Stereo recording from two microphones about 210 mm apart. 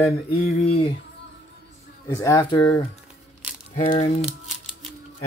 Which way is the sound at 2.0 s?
15° left (ahead or behind).